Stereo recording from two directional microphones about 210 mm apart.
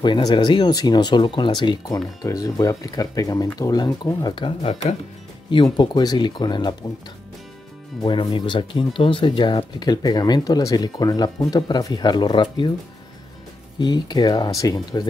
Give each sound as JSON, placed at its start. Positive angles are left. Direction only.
{"t": 0.0, "sound": "speech", "side_deg": 20}
{"t": 8.0, "sound": "speech", "side_deg": 20}
{"t": 13.7, "sound": "speech", "side_deg": 20}